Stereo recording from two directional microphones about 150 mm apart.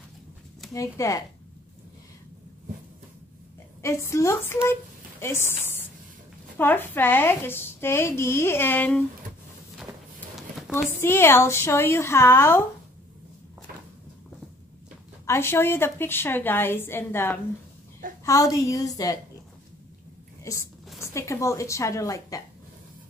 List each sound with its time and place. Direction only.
0.7 s a woman's voice: 20° left (ahead or behind)
3.8 s a woman's voice: 20° left (ahead or behind)
6.6 s a woman's voice: 15° left (ahead or behind)
11.0 s a woman's voice: 15° left (ahead or behind)
15.2 s a woman's voice: 15° left (ahead or behind)
20.5 s a woman's voice: 20° left (ahead or behind)